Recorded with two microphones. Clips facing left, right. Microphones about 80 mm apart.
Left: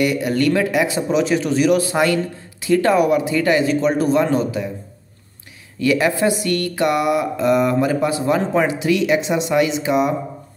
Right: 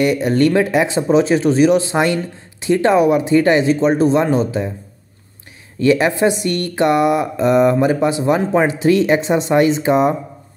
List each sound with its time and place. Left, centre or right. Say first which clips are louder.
0.0 s speech: right 3 dB; right
5.8 s speech: right 3 dB; right